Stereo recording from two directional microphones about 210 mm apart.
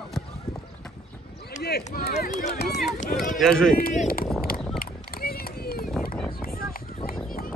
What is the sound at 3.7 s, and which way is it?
Speech, 45° left (ahead or behind).